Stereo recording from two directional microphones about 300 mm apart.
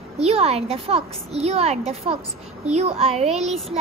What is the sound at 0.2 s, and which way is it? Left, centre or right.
A child's voice, centre.